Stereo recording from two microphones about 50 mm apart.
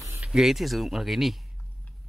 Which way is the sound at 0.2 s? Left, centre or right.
Centre.